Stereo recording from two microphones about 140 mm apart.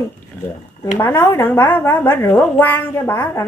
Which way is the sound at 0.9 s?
15° left (ahead or behind).